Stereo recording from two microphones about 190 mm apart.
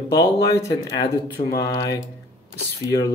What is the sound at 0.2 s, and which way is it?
A man's voice, 20° left (ahead or behind).